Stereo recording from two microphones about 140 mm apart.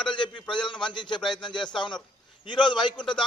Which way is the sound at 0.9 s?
35° left (ahead or behind).